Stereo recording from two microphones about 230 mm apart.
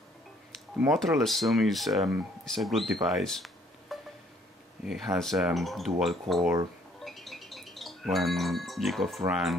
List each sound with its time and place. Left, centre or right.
0.7 s speech: centre
7.1 s music: centre
9.2 s speech: centre